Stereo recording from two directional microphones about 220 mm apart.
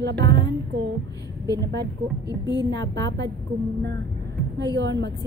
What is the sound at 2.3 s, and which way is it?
Speech, 55° right (ahead or behind).